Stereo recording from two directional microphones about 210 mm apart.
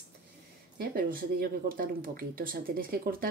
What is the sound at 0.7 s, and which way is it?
Speech, 45° right (ahead or behind).